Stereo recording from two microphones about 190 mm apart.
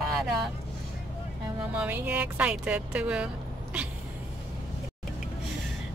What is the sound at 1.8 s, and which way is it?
Speech, 5° right (ahead or behind).